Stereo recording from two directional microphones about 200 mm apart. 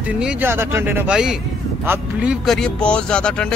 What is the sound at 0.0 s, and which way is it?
Speech, 5° right (ahead or behind).